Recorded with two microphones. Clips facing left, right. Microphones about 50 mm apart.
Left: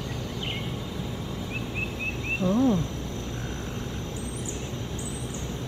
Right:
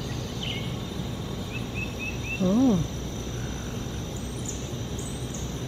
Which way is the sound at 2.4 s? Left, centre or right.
Left.